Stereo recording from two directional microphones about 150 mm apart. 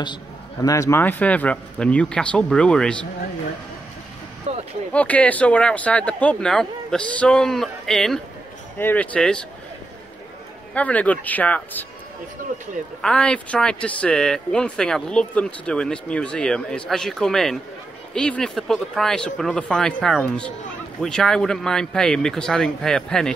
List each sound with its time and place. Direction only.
0.0 s speech: 25° left (ahead or behind); by 3.1 s 5° left (ahead or behind)
4.5 s vehicle: 45° right (ahead or behind)
4.9 s speech: 10° left (ahead or behind)
10.7 s speech: 10° left (ahead or behind)
13.0 s speech: 5° left (ahead or behind)